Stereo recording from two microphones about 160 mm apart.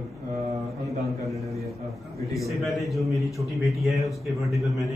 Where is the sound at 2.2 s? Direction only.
20° left (ahead or behind).